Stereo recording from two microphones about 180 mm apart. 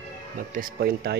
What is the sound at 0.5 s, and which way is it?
Speech, 55° right (ahead or behind).